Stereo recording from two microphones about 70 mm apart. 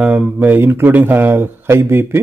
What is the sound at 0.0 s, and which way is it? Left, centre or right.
Speech, right.